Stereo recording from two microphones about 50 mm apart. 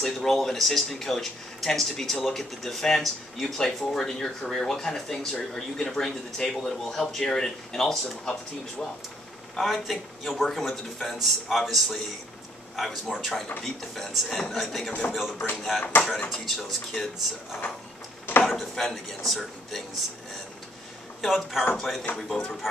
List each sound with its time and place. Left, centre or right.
0.0 s speech: centre
9.6 s speech: centre
18.4 s speech: centre
21.2 s speech: centre
21.7 s speech: centre